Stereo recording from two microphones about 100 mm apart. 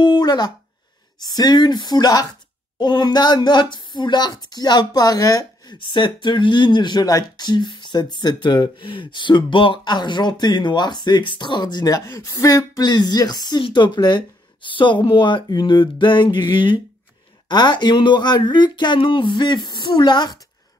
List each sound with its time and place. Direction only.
0.0 s a sound: 45° left (ahead or behind)
1.2 s speech: 40° left (ahead or behind)
5.8 s speech: 55° left (ahead or behind)